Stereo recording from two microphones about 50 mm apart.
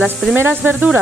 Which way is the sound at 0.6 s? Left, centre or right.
Right.